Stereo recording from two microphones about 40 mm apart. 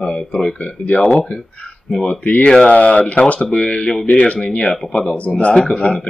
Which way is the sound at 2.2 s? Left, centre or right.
Left.